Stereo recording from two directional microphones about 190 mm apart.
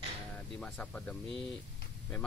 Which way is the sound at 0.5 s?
5° left (ahead or behind).